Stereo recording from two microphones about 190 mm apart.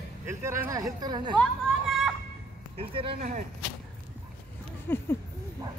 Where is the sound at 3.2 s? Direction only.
45° right (ahead or behind).